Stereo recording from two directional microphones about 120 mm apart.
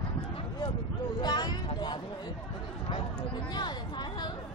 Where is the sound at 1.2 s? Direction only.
35° left (ahead or behind).